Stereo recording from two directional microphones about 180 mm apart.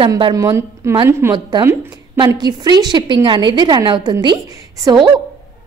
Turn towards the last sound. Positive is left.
turn(degrees=-25)  # may be behind; listen again after turning